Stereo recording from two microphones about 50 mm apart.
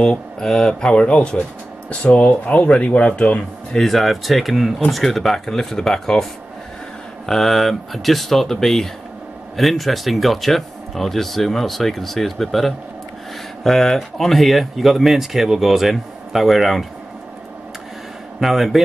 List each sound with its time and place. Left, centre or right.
0.0 s speech: centre
3.7 s speech: centre
7.2 s speech: centre
18.4 s speech: centre